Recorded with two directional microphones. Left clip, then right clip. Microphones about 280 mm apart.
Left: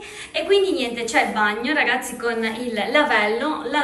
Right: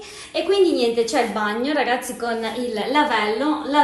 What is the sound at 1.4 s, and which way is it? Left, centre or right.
Speech, centre.